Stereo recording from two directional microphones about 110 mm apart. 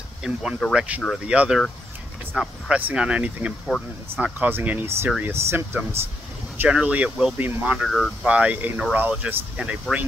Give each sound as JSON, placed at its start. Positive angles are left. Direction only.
{"t": 0.2, "sound": "speech", "side_deg": -5}
{"t": 6.7, "sound": "speech", "side_deg": -10}
{"t": 7.8, "sound": "speech", "side_deg": 0}
{"t": 8.3, "sound": "speech", "side_deg": -10}